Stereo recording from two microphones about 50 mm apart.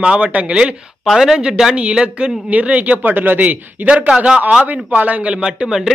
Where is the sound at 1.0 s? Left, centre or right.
Centre; by 3.0 s right.